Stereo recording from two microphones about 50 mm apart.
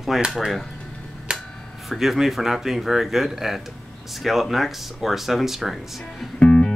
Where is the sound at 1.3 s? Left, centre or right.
Centre.